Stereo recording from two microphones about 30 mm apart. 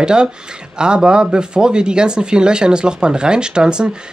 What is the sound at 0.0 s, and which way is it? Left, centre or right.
Speech, right.